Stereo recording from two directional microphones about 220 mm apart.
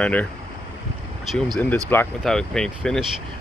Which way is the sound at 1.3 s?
5° left (ahead or behind).